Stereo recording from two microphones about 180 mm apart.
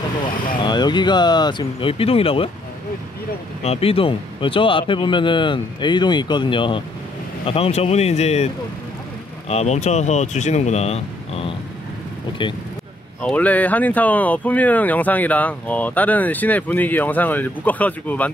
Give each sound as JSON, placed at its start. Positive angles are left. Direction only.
{"t": 0.6, "sound": "speech", "side_deg": 25}
{"t": 3.6, "sound": "speech", "side_deg": 35}
{"t": 9.5, "sound": "speech", "side_deg": 35}
{"t": 13.2, "sound": "speech", "side_deg": 5}